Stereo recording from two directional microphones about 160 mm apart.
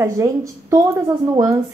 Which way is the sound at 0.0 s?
20° right (ahead or behind).